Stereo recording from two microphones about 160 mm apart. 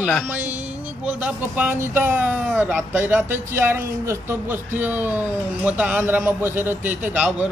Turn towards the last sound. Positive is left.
turn(degrees=-10)  # may be behind; listen again after turning